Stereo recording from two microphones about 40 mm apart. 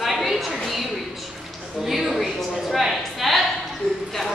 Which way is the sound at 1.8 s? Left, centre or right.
Centre.